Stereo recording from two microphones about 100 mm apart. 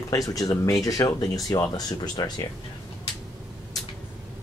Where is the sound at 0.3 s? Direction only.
40° left (ahead or behind).